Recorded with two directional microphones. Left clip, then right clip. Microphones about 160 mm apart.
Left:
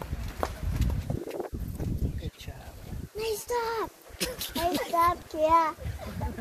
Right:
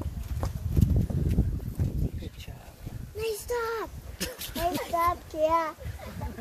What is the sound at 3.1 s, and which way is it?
Child singing, 60° right (ahead or behind).